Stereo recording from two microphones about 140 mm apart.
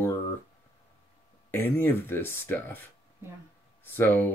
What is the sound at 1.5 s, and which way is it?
Speech, 15° left (ahead or behind).